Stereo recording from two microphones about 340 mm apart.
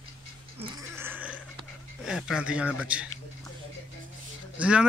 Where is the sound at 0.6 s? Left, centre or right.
Centre.